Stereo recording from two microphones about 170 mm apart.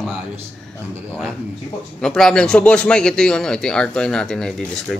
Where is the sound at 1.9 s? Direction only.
5° left (ahead or behind).